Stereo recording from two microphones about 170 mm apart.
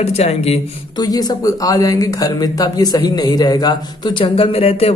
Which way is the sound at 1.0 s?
20° left (ahead or behind).